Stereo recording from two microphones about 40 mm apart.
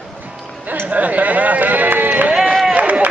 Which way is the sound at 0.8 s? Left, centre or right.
Right.